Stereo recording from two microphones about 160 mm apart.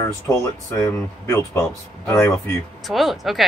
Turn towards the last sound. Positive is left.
turn(degrees=0)  # may be behind; listen again after turning